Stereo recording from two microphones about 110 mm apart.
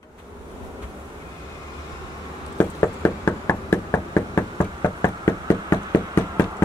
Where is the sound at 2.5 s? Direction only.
30° left (ahead or behind).